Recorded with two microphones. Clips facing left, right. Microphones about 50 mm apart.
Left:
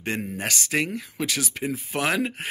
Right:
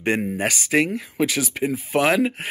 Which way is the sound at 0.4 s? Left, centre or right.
Centre.